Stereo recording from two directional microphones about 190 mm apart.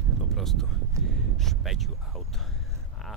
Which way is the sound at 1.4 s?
Centre (ahead or behind).